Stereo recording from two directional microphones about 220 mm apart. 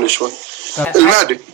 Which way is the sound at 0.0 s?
50° right (ahead or behind).